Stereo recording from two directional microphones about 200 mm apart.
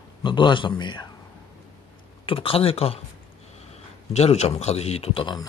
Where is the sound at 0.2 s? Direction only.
25° left (ahead or behind).